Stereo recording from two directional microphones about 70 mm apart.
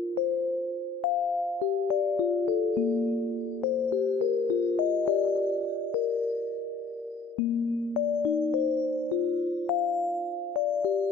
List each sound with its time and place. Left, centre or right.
4.9 s music: left
5.3 s music: right
8.3 s music: centre
9.7 s music: centre